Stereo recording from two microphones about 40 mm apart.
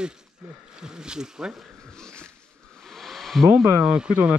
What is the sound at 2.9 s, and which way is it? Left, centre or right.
Hair dryer, centre.